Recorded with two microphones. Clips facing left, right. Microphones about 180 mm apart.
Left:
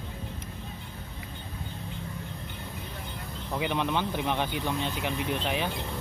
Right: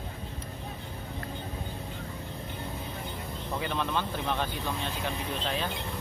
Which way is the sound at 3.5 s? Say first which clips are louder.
Left 3 dB; 10° left (ahead or behind).